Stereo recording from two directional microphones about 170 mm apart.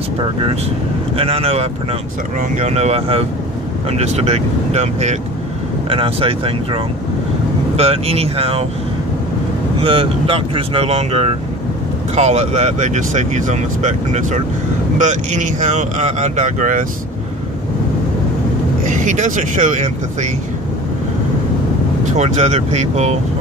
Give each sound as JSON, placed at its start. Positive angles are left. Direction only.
{"t": 1.1, "sound": "speech", "side_deg": -35}
{"t": 9.8, "sound": "speech", "side_deg": -30}
{"t": 18.9, "sound": "speech", "side_deg": -45}
{"t": 22.0, "sound": "speech", "side_deg": -45}